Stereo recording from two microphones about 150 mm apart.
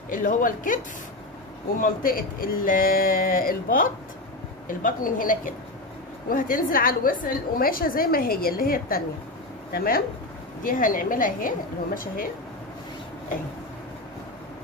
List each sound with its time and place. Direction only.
0.1 s a woman's voice: 65° left (ahead or behind)
1.8 s a woman's voice: 70° left (ahead or behind)
10.6 s a woman's voice: 65° left (ahead or behind)